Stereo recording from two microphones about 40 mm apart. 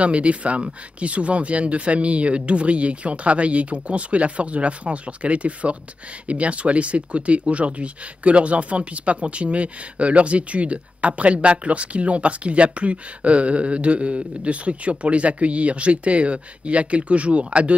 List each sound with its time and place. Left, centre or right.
0.0 s speech: right